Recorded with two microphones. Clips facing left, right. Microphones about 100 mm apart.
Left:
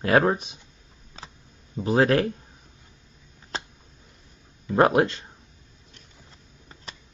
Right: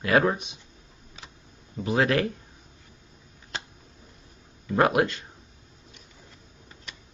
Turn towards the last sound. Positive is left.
turn(degrees=35)  # may be behind; listen again after turning